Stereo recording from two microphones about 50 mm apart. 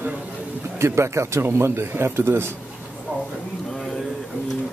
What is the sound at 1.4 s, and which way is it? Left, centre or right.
Speech, right.